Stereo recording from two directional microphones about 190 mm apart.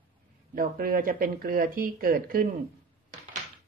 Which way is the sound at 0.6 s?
50° right (ahead or behind).